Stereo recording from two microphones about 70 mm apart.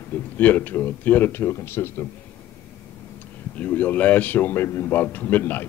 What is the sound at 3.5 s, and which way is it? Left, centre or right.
Speech, left.